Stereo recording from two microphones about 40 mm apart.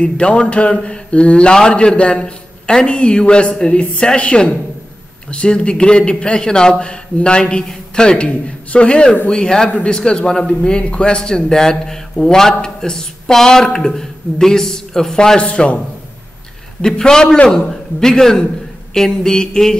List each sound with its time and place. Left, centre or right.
0.0 s a man's voice: left
16.8 s speech: centre